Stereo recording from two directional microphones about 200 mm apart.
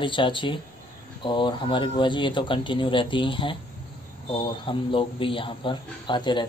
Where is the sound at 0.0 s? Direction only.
25° left (ahead or behind).